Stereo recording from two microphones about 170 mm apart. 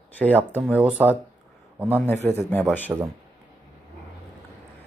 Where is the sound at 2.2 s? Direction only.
15° left (ahead or behind).